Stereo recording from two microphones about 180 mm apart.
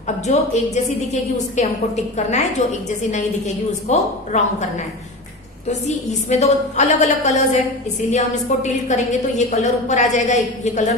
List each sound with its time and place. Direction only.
0.3 s a woman's voice: 40° left (ahead or behind)
5.7 s a woman's voice: 40° left (ahead or behind)